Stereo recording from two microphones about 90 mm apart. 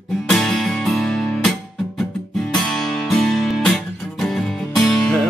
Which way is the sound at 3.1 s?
5° left (ahead or behind).